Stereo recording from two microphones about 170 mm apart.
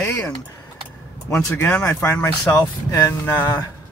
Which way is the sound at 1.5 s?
10° left (ahead or behind).